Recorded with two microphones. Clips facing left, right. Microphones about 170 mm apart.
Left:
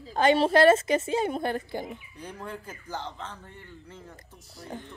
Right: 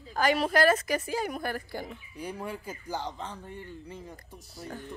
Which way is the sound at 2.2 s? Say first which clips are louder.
Right 4 dB; 10° right (ahead or behind).